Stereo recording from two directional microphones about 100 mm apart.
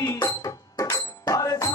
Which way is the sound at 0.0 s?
40° left (ahead or behind).